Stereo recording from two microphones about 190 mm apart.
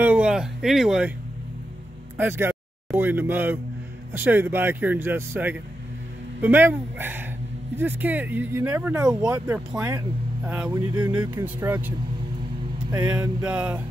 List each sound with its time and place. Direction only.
0.0 s speech: 5° right (ahead or behind)
2.1 s speech: 10° right (ahead or behind)
10.7 s speech: 20° right (ahead or behind)
11.1 s speech: 10° right (ahead or behind)
13.0 s speech: 5° right (ahead or behind)